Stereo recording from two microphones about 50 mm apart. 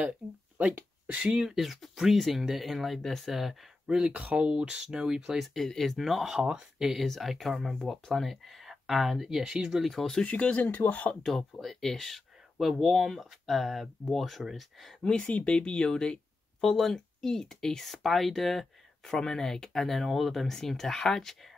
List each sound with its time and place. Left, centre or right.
0.6 s speech: right
1.3 s speech: centre
3.8 s speech: centre
4.1 s speech: right
5.4 s speech: centre
6.0 s speech: centre
9.8 s speech: centre
10.2 s speech: left
11.2 s speech: centre
15.0 s speech: centre